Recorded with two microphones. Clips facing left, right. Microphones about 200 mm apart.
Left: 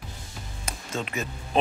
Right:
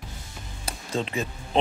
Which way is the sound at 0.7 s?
35° right (ahead or behind).